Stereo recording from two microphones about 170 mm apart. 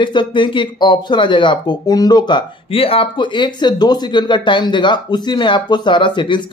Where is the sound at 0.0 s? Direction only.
30° left (ahead or behind).